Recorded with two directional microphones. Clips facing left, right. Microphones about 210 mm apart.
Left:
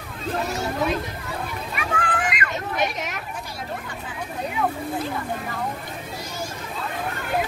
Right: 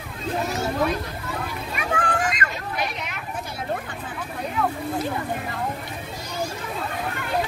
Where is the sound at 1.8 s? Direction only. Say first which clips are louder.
Right 2 dB; 40° right (ahead or behind).